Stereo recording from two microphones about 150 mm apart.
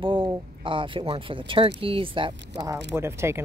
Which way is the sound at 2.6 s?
15° right (ahead or behind).